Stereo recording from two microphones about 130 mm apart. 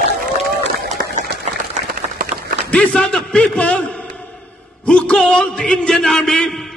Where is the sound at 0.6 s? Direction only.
65° right (ahead or behind).